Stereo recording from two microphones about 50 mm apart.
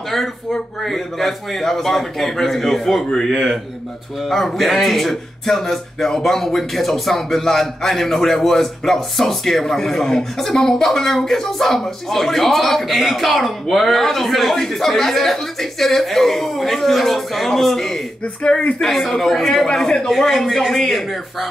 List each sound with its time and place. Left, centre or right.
0.1 s a man's voice: centre
18.8 s a man's voice: centre